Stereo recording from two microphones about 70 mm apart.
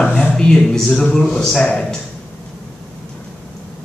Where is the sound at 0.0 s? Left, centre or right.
Left.